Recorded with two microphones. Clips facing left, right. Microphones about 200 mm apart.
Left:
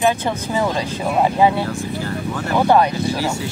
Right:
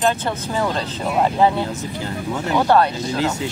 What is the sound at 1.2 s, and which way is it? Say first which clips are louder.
Speech: left 1 dB; 10° left (ahead or behind).